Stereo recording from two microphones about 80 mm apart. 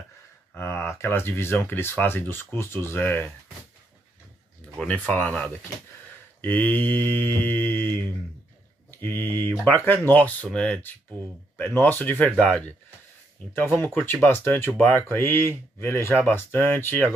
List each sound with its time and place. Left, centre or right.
0.6 s speech: left
4.7 s speech: centre
11.8 s speech: left
13.5 s speech: left